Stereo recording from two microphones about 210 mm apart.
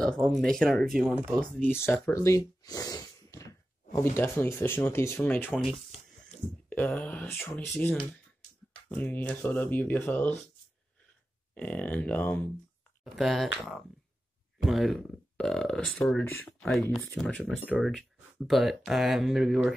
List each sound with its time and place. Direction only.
0.0 s speech: centre (ahead or behind)
1.9 s speech: 15° left (ahead or behind)
11.5 s speech: 5° left (ahead or behind)